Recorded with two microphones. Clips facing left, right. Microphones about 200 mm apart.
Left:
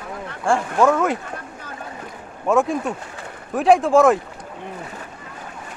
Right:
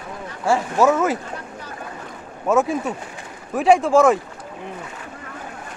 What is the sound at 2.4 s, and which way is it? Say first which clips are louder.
Speech: even; centre (ahead or behind).